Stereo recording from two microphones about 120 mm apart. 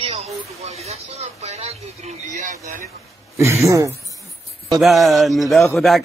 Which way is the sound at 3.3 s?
25° right (ahead or behind).